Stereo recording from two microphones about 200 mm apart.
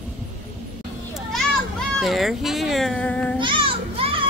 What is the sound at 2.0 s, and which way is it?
Speech, centre (ahead or behind).